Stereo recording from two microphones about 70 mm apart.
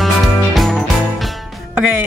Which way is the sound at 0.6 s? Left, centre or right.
Centre.